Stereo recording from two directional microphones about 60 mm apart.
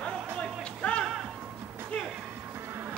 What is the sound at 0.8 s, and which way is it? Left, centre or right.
Music, centre.